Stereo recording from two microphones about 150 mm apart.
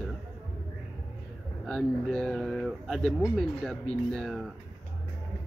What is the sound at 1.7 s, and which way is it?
Speech, 5° left (ahead or behind).